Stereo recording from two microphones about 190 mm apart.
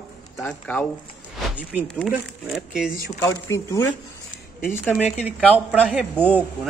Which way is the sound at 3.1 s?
15° left (ahead or behind).